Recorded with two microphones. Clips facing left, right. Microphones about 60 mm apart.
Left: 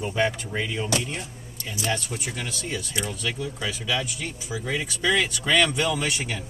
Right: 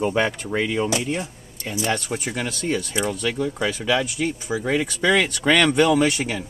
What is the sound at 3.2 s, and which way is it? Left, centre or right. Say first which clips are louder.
Speech: right 6 dB; right.